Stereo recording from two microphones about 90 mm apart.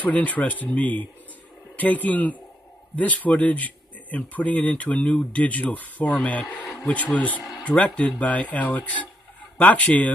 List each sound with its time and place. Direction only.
0.0 s speech: 15° left (ahead or behind)
6.5 s a sound: 20° left (ahead or behind)
7.2 s speech: 15° left (ahead or behind)